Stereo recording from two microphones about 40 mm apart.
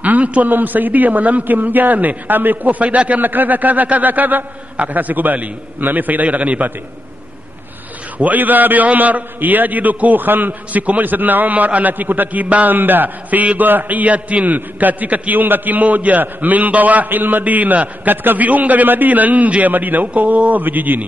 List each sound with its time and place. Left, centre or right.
0.0 s a sound: right
0.5 s a man's voice: right
3.2 s a man's voice: right
8.2 s a man's voice: right
10.7 s a man's voice: right
12.7 s a man's voice: right
15.4 s a man's voice: right